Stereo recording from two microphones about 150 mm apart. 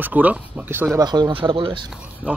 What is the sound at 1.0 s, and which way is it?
Speech, 30° right (ahead or behind).